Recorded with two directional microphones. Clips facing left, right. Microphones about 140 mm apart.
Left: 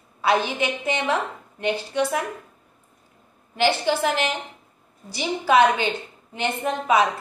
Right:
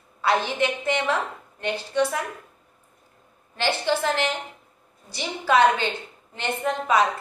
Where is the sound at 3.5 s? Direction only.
15° left (ahead or behind).